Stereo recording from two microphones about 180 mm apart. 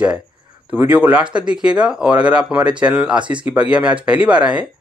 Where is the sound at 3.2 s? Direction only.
25° right (ahead or behind).